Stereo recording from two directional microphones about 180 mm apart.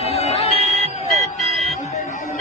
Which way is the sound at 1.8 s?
40° left (ahead or behind).